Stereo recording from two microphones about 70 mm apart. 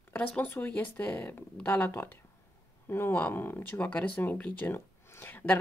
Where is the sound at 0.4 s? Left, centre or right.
Left.